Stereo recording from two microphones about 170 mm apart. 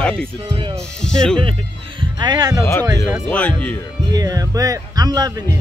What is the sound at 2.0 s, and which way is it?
Speech, 25° right (ahead or behind).